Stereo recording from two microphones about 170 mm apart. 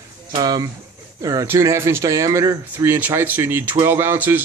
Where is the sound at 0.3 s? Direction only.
25° right (ahead or behind).